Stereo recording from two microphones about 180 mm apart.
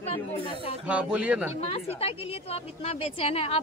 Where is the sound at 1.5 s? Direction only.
40° left (ahead or behind).